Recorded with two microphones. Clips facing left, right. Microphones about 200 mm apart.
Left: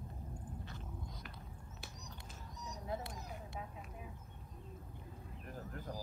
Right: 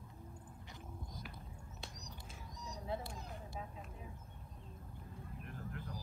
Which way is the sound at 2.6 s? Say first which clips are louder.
Even; 30° right (ahead or behind).